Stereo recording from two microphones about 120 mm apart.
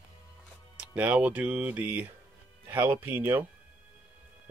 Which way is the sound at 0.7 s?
10° right (ahead or behind).